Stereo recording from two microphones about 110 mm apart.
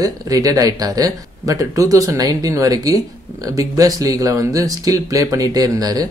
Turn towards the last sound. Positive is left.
turn(degrees=-35)  # may be behind; listen again after turning